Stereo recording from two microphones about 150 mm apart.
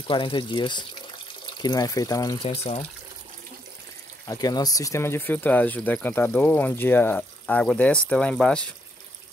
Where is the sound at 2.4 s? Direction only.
45° left (ahead or behind).